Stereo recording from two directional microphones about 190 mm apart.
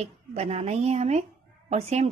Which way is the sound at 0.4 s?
35° right (ahead or behind).